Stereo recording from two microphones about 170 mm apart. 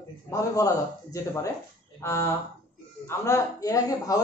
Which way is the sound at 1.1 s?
20° left (ahead or behind).